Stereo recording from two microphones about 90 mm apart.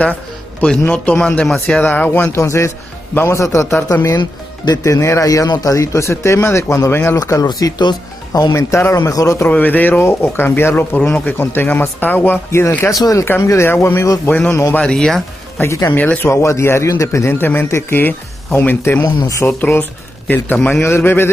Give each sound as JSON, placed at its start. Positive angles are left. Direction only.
{"t": 0.6, "sound": "a man's voice", "side_deg": 15}
{"t": 1.8, "sound": "a man's voice", "side_deg": 20}
{"t": 2.3, "sound": "speech", "side_deg": 30}
{"t": 4.8, "sound": "speech", "side_deg": 35}
{"t": 7.2, "sound": "speech", "side_deg": 35}
{"t": 7.4, "sound": "speech", "side_deg": 50}
{"t": 9.5, "sound": "a man's voice", "side_deg": 20}
{"t": 13.2, "sound": "a man's voice", "side_deg": 30}
{"t": 14.8, "sound": "speech", "side_deg": 10}
{"t": 15.6, "sound": "speech", "side_deg": 30}
{"t": 16.0, "sound": "a man's voice", "side_deg": 20}
{"t": 16.3, "sound": "a man's voice", "side_deg": 35}